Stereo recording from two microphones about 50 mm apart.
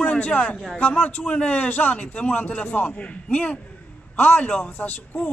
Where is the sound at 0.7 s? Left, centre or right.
Left.